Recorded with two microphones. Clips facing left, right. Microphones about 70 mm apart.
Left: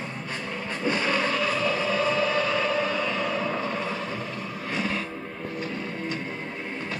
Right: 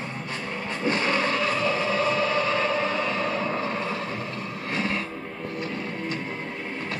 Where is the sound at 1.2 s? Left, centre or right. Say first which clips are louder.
Right 1 dB; right.